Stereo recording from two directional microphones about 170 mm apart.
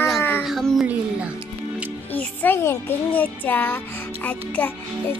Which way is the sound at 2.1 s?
10° left (ahead or behind).